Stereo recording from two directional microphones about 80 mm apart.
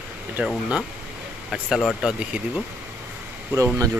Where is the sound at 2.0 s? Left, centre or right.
Centre.